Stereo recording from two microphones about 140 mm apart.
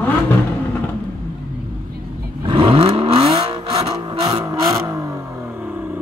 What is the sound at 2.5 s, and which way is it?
Vehicle, 35° right (ahead or behind).